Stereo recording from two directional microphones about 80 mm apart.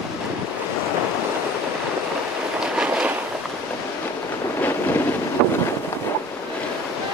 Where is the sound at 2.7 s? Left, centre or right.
Centre.